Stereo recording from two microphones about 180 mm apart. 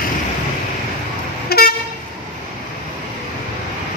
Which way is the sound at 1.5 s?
60° left (ahead or behind).